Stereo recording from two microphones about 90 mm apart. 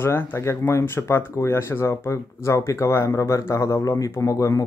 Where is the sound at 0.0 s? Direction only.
25° left (ahead or behind).